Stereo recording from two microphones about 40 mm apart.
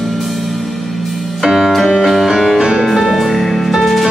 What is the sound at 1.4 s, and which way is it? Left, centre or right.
Music, centre.